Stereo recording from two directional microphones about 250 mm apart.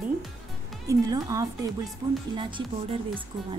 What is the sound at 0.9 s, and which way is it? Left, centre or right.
A woman's voice, centre.